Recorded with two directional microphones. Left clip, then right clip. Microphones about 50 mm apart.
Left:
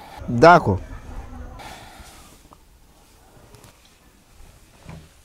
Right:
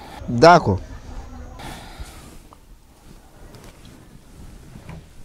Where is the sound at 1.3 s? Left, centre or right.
Centre.